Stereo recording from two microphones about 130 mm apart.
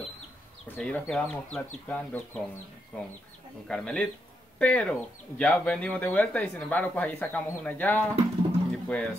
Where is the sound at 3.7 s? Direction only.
5° left (ahead or behind).